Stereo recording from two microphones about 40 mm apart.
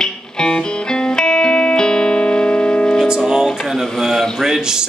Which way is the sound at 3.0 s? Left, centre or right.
Centre.